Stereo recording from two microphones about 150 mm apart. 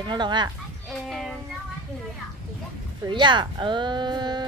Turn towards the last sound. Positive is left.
turn(degrees=-30)  # may be behind; listen again after turning